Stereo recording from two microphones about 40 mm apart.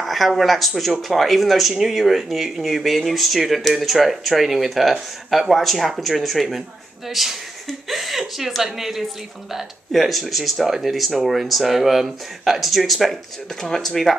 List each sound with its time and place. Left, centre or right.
0.0 s speech: centre